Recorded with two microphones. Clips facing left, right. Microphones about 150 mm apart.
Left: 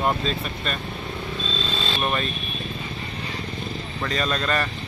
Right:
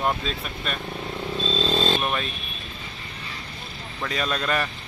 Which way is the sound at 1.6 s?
35° right (ahead or behind).